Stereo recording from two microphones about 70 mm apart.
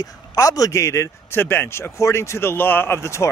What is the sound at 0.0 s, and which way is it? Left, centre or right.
Speech, left.